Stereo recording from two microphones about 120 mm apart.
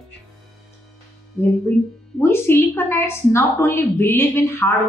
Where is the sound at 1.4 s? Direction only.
20° left (ahead or behind).